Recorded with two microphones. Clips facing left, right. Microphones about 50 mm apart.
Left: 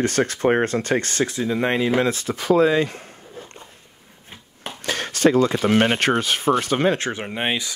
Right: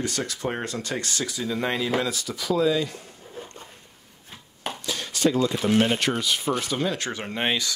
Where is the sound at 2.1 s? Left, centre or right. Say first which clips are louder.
Left 7 dB; left.